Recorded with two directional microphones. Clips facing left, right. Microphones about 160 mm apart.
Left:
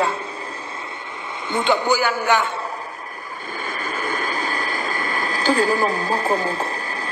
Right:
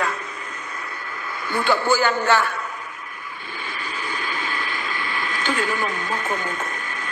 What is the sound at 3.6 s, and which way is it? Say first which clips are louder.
Vehicle: left 5 dB; 45° left (ahead or behind).